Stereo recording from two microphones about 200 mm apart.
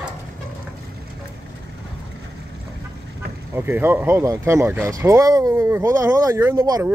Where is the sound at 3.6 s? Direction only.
10° right (ahead or behind).